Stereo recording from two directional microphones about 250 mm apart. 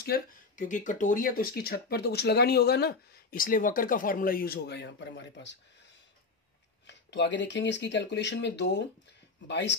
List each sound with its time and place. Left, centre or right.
0.0 s speech: left
6.9 s speech: left